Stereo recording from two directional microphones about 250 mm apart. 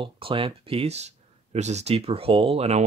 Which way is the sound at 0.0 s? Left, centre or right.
Right.